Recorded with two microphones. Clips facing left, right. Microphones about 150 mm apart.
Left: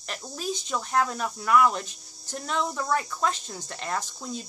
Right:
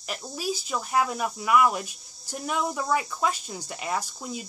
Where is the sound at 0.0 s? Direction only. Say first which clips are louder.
Right 2 dB; 5° right (ahead or behind).